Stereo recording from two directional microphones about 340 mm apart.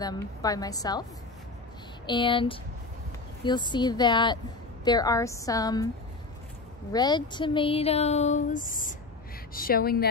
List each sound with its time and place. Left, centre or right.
0.0 s speech: centre
2.0 s speech: centre
6.9 s a woman's voice: centre